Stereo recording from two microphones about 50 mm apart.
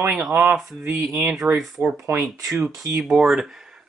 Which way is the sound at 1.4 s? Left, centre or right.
Right.